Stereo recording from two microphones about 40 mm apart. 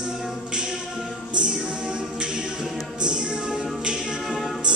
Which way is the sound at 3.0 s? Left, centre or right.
Centre.